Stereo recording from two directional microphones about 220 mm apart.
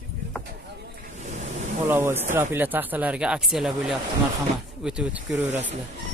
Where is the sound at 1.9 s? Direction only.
10° right (ahead or behind).